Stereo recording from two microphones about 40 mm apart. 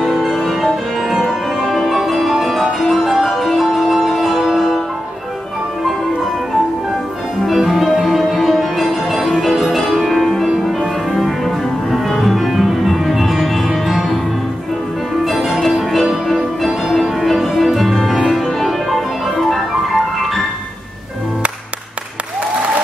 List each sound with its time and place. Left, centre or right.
0.1 s music: centre
7.4 s music: centre
10.5 s music: centre
11.1 s music: centre
11.9 s music: centre
15.2 s music: centre